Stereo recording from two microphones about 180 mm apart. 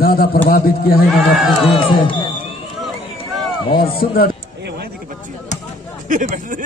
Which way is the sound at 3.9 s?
55° left (ahead or behind).